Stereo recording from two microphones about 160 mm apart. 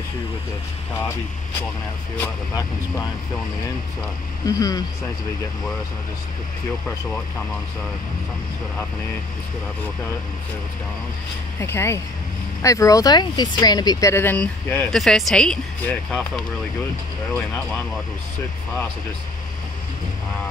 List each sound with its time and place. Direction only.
2.1 s speech: 15° left (ahead or behind)
4.5 s speech: 20° left (ahead or behind)
11.6 s speech: 15° left (ahead or behind)